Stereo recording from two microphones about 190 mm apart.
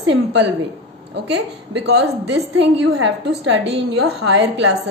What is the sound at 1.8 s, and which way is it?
A woman's voice, 60° right (ahead or behind).